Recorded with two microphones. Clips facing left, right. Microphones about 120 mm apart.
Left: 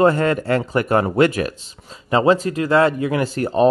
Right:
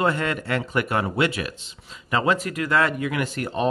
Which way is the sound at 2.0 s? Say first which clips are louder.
Left 7 dB; 30° left (ahead or behind).